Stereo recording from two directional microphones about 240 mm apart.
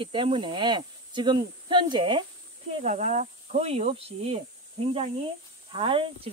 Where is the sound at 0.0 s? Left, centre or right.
Right.